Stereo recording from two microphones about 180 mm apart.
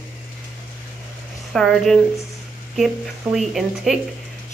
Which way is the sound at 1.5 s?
Centre (ahead or behind).